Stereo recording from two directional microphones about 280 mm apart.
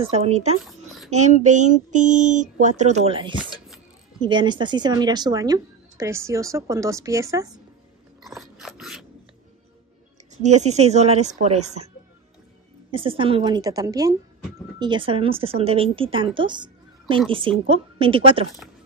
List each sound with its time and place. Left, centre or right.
0.0 s speech: right
0.6 s a sound: centre
1.1 s speech: right
8.5 s filing: centre
10.4 s speech: right
12.9 s speech: centre